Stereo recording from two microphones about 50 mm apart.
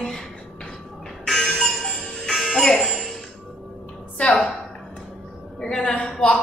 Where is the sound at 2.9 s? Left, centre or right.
Centre.